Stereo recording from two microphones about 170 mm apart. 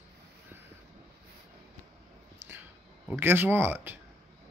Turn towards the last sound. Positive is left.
turn(degrees=-10)  # may be behind; listen again after turning